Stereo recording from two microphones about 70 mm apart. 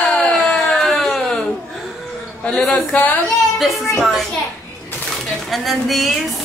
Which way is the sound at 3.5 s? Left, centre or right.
Centre.